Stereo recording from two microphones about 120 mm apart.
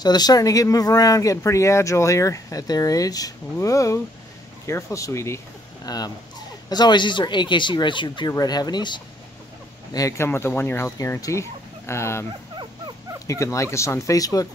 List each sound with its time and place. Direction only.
0.0 s speech: 35° left (ahead or behind)
9.9 s speech: 25° left (ahead or behind)
13.3 s speech: 25° left (ahead or behind)